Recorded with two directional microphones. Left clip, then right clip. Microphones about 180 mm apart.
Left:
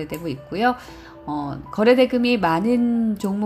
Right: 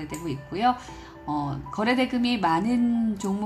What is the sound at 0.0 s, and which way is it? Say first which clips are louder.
Speech: left 5 dB; 25° left (ahead or behind).